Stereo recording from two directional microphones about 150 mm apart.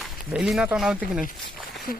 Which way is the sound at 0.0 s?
5° right (ahead or behind).